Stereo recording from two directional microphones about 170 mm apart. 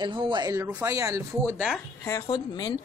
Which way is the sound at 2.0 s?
20° left (ahead or behind).